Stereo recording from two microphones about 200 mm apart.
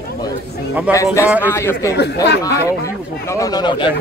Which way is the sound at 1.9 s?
55° left (ahead or behind).